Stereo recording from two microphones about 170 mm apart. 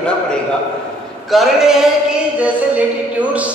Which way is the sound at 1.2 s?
Centre (ahead or behind).